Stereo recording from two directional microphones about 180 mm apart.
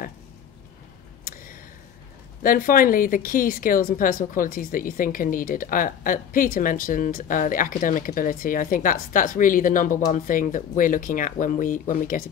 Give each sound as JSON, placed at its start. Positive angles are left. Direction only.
{"t": 2.4, "sound": "a woman's voice", "side_deg": 50}